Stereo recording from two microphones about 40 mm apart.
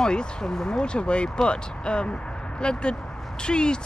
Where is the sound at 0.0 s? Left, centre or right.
Centre.